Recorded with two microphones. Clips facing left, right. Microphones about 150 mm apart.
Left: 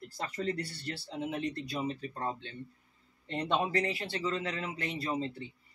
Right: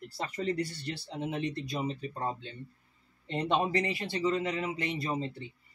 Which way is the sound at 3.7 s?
15° right (ahead or behind).